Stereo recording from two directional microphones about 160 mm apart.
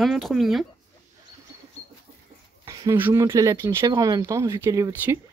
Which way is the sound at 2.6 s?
15° right (ahead or behind).